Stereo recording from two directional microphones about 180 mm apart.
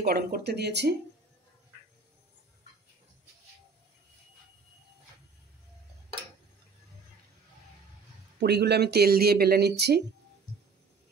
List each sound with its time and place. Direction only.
0.0 s speech: 60° right (ahead or behind)
8.4 s speech: 65° right (ahead or behind)